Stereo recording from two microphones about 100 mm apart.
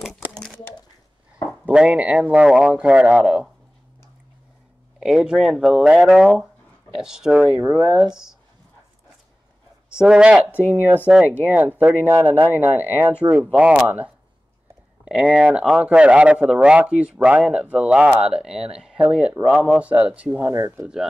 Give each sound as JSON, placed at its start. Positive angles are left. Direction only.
{"t": 0.0, "sound": "a sound", "side_deg": 0}
{"t": 1.7, "sound": "speech", "side_deg": -10}
{"t": 5.0, "sound": "speech", "side_deg": -5}
{"t": 9.9, "sound": "a man's voice", "side_deg": -10}
{"t": 20.8, "sound": "speech", "side_deg": -10}